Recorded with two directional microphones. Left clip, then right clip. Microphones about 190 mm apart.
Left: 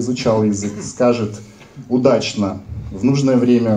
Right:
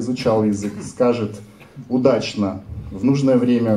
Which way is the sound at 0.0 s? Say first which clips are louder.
Left 2 dB; 30° left (ahead or behind).